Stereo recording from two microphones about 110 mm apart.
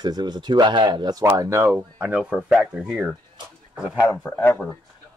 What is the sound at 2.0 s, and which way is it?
Speech, 10° right (ahead or behind).